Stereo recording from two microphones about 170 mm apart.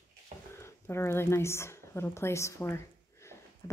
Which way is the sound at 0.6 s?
15° left (ahead or behind).